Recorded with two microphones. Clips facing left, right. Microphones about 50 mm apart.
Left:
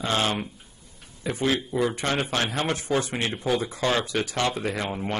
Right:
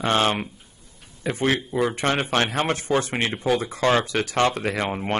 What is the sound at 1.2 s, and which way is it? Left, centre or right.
Speech, right.